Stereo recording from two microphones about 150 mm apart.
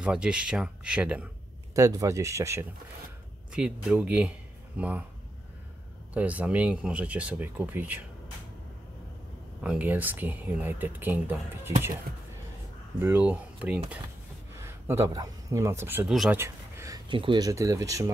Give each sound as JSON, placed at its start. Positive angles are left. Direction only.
{"t": 0.0, "sound": "speech", "side_deg": -5}
{"t": 1.8, "sound": "speech", "side_deg": -20}
{"t": 3.5, "sound": "speech", "side_deg": -5}
{"t": 6.1, "sound": "speech", "side_deg": -10}
{"t": 9.6, "sound": "speech", "side_deg": -10}
{"t": 13.0, "sound": "speech", "side_deg": -10}
{"t": 16.1, "sound": "speech", "side_deg": 0}
{"t": 16.3, "sound": "a sound", "side_deg": -20}
{"t": 17.1, "sound": "speech", "side_deg": -35}